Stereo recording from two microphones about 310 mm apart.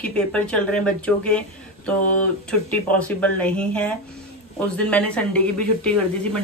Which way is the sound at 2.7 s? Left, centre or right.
Centre.